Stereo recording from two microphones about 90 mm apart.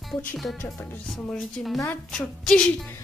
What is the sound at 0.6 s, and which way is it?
Music, 30° left (ahead or behind).